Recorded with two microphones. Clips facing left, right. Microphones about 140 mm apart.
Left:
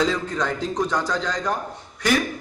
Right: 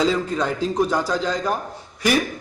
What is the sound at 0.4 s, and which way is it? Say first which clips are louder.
A man's voice: right 3 dB; 10° right (ahead or behind).